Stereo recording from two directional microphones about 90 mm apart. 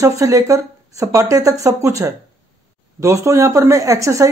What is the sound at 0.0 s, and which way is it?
Speech, 35° right (ahead or behind).